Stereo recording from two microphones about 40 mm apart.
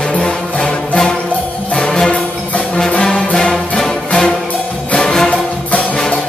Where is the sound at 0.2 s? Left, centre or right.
Centre.